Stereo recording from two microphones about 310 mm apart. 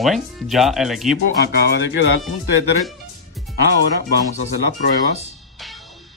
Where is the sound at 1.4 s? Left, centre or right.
Left.